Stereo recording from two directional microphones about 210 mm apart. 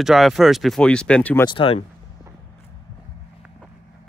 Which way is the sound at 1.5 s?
25° left (ahead or behind).